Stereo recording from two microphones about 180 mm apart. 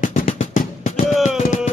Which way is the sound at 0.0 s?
45° left (ahead or behind).